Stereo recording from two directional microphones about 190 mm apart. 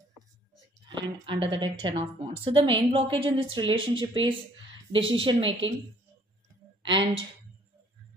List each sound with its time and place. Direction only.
0.8 s a woman's voice: 25° right (ahead or behind)
6.9 s a woman's voice: 25° right (ahead or behind)